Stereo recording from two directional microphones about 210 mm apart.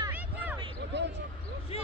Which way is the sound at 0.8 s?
55° right (ahead or behind).